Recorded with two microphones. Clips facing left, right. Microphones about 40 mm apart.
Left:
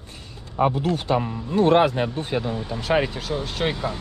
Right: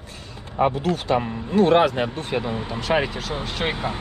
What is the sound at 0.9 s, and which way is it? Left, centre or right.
Speech, right.